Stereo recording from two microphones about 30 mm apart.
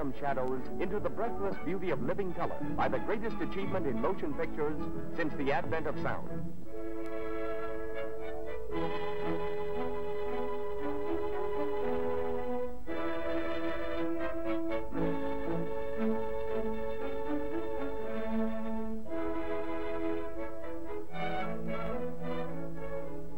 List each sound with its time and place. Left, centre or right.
0.0 s speech: centre
5.2 s speech: centre
8.7 s music: centre
18.3 s music: centre
21.2 s music: centre